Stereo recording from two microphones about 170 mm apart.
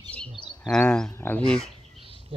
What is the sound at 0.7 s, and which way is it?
Speech, 5° left (ahead or behind).